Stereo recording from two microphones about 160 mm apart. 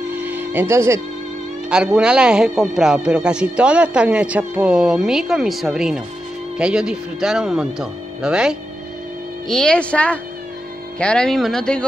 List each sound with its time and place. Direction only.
0.1 s music: 10° right (ahead or behind)
1.7 s speech: 5° right (ahead or behind)